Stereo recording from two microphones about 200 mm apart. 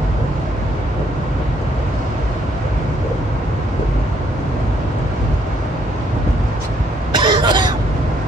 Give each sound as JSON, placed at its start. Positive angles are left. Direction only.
{"t": 7.1, "sound": "cough", "side_deg": -25}